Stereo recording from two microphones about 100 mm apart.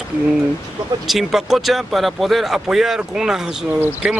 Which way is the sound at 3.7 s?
20° right (ahead or behind).